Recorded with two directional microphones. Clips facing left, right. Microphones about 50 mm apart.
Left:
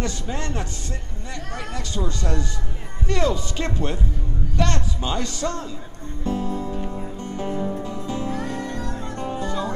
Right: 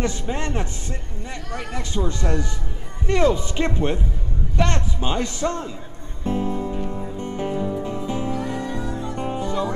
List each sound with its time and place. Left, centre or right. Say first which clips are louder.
0.0 s a man's voice: right 3 dB; right
6.2 s music: right 2 dB; right